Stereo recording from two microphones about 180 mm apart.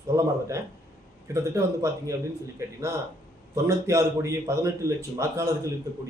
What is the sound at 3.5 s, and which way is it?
A man's voice, 15° right (ahead or behind).